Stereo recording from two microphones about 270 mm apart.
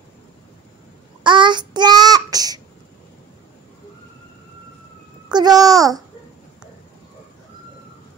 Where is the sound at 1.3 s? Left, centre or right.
Centre.